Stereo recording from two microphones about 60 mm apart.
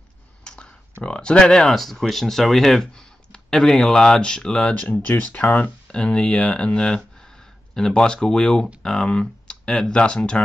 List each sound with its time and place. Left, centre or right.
0.4 s a sound: centre
1.0 s speech: centre
5.0 s speech: left